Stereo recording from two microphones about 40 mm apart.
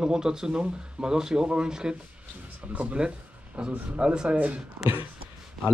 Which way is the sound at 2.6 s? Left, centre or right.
Right.